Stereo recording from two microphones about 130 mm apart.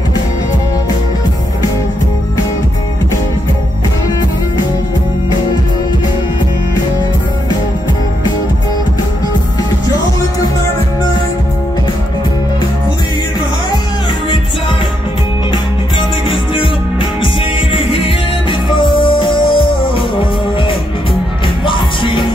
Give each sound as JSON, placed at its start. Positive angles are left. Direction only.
{"t": 17.7, "sound": "music", "side_deg": 45}
{"t": 21.6, "sound": "music", "side_deg": 40}